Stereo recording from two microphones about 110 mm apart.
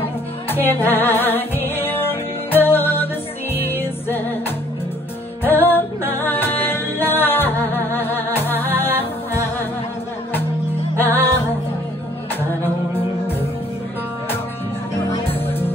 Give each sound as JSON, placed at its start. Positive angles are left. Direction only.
{"t": 0.5, "sound": "music", "side_deg": 20}
{"t": 11.0, "sound": "music", "side_deg": 20}